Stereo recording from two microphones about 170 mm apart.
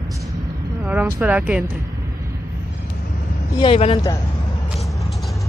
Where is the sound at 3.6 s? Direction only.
35° left (ahead or behind).